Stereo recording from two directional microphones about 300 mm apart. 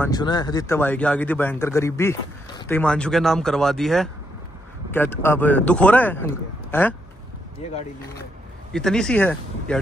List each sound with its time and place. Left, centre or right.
0.0 s speech: centre
7.6 s speech: centre
8.7 s speech: centre